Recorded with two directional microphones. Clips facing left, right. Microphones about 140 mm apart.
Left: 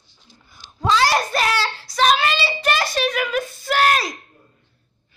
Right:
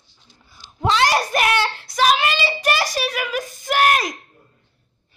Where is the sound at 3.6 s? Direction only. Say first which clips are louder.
Right 1 dB; 15° right (ahead or behind).